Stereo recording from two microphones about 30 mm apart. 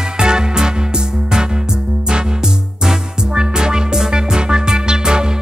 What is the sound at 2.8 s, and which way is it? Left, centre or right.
Music, right.